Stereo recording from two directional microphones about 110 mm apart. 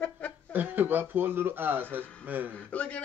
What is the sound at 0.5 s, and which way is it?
Speech, 15° right (ahead or behind).